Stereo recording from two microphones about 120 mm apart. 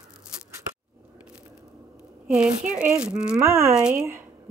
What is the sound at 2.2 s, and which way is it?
A child's voice, 10° right (ahead or behind).